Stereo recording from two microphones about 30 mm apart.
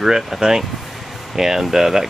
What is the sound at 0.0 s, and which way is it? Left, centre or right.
Speech, centre.